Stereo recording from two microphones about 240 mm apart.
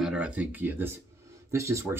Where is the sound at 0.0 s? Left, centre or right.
Centre.